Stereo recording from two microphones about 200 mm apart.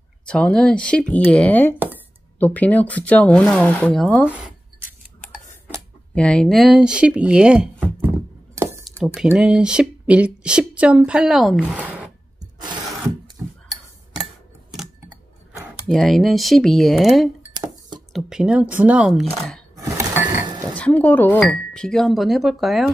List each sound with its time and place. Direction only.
0.2 s speech: 5° left (ahead or behind)
4.3 s writing: 10° right (ahead or behind)
6.1 s speech: 5° left (ahead or behind)
12.4 s a sound: 20° right (ahead or behind)
14.7 s scissors: centre (ahead or behind)
15.9 s speech: centre (ahead or behind)
17.6 s a sound: 20° right (ahead or behind)
18.1 s speech: 5° right (ahead or behind)
19.7 s dishes: 15° right (ahead or behind)
20.7 s speech: 5° left (ahead or behind)